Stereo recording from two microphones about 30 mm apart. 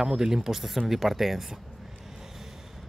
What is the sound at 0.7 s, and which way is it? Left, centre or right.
Speech, centre.